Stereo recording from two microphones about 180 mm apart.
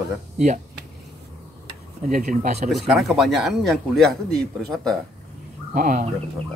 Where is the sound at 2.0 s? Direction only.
45° right (ahead or behind).